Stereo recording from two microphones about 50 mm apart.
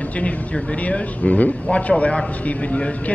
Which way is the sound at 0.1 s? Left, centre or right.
Left.